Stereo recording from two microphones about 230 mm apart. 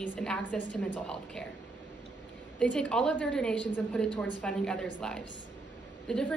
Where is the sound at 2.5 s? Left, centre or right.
Centre.